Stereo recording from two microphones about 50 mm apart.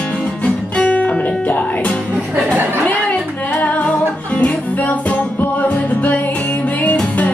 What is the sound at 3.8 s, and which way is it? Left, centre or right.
Music, left.